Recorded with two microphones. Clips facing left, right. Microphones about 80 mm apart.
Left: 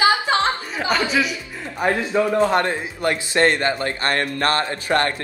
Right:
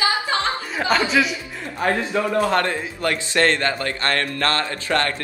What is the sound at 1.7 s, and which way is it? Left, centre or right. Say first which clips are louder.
A man's voice: left 2 dB; centre.